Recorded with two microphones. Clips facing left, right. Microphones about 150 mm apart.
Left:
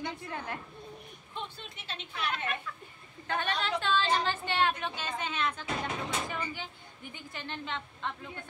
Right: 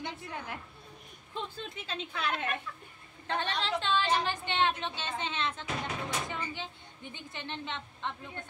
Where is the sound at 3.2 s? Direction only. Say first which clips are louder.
Left 1 dB; 30° right (ahead or behind).